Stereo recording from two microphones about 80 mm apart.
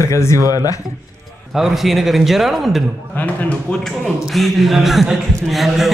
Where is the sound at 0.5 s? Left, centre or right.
Left.